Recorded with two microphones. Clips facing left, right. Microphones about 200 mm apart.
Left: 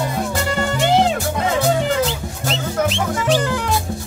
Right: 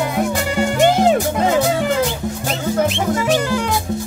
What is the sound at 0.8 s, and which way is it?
Music, 50° right (ahead or behind).